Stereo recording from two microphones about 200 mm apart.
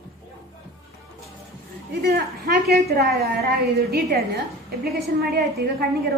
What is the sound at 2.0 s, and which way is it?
A woman's voice, 50° right (ahead or behind).